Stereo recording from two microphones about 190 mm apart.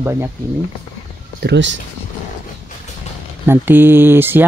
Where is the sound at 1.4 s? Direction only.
65° right (ahead or behind).